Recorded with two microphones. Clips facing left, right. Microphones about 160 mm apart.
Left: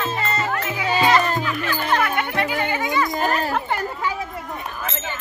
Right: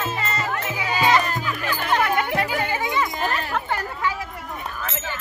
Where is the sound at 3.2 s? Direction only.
40° left (ahead or behind).